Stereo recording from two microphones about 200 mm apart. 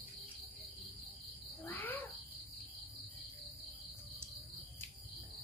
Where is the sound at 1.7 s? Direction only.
10° left (ahead or behind).